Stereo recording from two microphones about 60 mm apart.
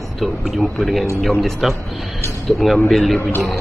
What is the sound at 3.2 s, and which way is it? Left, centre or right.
Speech, left.